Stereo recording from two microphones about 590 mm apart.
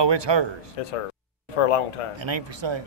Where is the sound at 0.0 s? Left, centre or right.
Right.